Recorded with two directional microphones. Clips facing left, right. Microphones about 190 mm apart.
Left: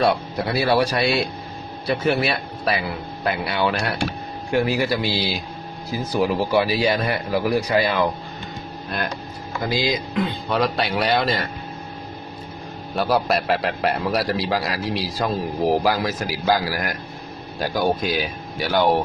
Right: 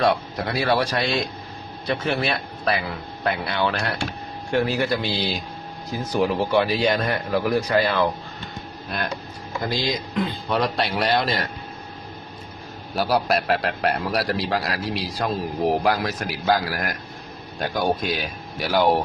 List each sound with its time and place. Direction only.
0.0 s speech: 5° left (ahead or behind)
8.9 s a man's voice: centre (ahead or behind)
12.9 s a man's voice: centre (ahead or behind)